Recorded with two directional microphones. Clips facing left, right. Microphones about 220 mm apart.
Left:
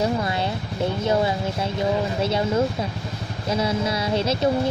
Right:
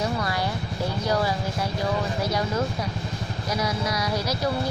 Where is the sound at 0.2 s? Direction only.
25° left (ahead or behind).